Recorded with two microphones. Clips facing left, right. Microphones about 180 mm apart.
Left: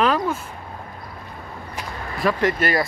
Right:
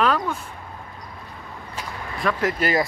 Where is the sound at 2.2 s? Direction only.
5° left (ahead or behind).